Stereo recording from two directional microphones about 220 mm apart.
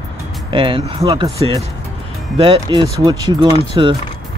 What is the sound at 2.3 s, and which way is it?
Speech, 25° right (ahead or behind).